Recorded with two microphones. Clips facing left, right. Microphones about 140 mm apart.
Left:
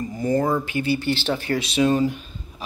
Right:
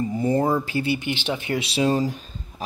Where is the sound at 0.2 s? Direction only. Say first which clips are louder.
Left 1 dB; 30° right (ahead or behind).